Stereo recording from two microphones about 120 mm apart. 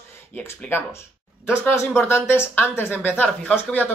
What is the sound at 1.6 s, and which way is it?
Speech, 20° left (ahead or behind).